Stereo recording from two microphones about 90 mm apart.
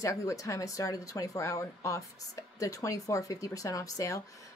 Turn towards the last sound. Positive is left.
turn(degrees=40)  # may be behind; listen again after turning